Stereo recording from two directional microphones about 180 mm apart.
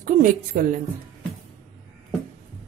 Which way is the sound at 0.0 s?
45° right (ahead or behind).